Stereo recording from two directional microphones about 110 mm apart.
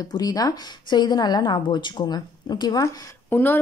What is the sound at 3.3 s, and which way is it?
Speech, 20° left (ahead or behind).